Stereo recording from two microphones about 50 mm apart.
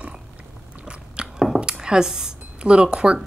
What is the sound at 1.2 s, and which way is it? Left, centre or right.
Chewing, centre.